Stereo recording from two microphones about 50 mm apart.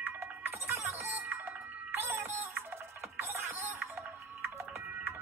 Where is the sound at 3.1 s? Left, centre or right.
Right.